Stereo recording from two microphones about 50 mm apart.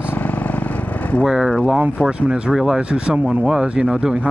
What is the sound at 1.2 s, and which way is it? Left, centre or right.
Speech, centre.